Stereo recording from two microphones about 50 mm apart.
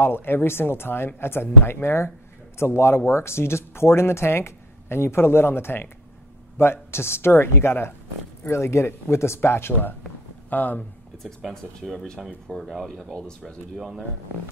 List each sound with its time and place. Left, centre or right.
0.0 s speech: left
8.5 s speech: left
11.5 s speech: centre
13.1 s speech: centre
13.7 s speech: centre